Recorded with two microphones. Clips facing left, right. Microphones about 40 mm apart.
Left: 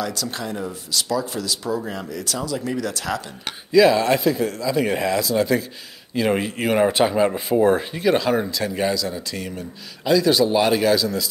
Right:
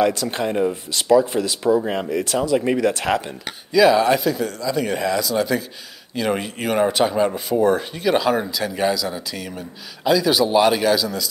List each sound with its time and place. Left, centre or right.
0.0 s speech: right
3.9 s speech: centre
4.2 s a man's voice: centre
8.1 s a man's voice: centre